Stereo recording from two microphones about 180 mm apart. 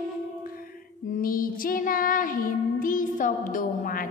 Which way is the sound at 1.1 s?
50° left (ahead or behind).